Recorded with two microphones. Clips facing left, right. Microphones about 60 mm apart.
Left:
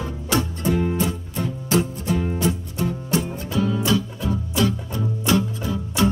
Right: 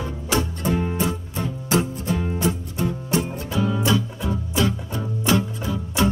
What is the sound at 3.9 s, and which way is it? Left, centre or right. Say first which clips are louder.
Music: even; centre.